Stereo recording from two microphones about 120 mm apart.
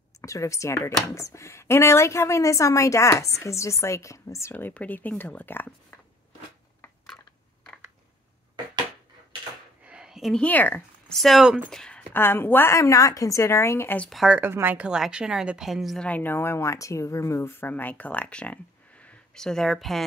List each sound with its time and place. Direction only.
0.2 s a woman's voice: 25° left (ahead or behind)
9.8 s a sound: 5° right (ahead or behind)
10.4 s speech: 15° left (ahead or behind)
11.1 s a woman's voice: centre (ahead or behind)
12.1 s a woman's voice: 20° left (ahead or behind)
14.0 s a woman's voice: centre (ahead or behind)
14.4 s speech: 15° right (ahead or behind)
14.9 s a woman's voice: 5° right (ahead or behind)
16.1 s speech: 15° left (ahead or behind)